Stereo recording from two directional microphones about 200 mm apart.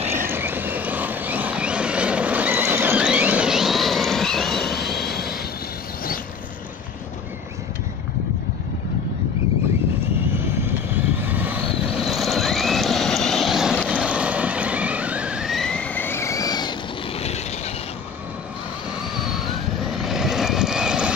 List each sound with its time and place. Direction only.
0.3 s vehicle: 10° right (ahead or behind)
4.8 s train: centre (ahead or behind)
5.1 s vehicle: 50° left (ahead or behind)
11.2 s vehicle: 10° right (ahead or behind); by 16.7 s 20° left (ahead or behind)
19.1 s vehicle: centre (ahead or behind)